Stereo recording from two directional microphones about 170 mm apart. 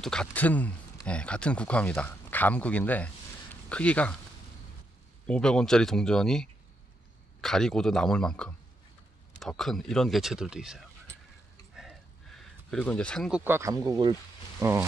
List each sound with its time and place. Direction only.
0.0 s speech: 5° left (ahead or behind)
5.2 s speech: 5° left (ahead or behind)
11.7 s a sound: centre (ahead or behind)
13.3 s speech: 10° right (ahead or behind)